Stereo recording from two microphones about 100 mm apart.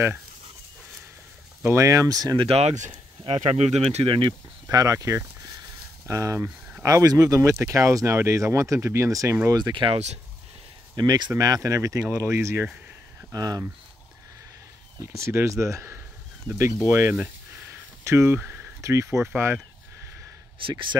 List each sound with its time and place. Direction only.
1.6 s speech: 25° right (ahead or behind)
2.3 s speech: 80° right
3.3 s speech: 90° right; by 4.4 s 60° right (ahead or behind)
4.6 s speech: 35° right (ahead or behind)
9.5 s speech: 45° right (ahead or behind)
11.0 s speech: 45° right (ahead or behind)
15.0 s speech: 30° right (ahead or behind)
18.0 s speech: 25° right (ahead or behind)
18.8 s speech: 30° right (ahead or behind)
20.6 s speech: 55° right (ahead or behind)